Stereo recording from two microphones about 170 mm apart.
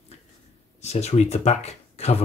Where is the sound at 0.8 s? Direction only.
40° left (ahead or behind).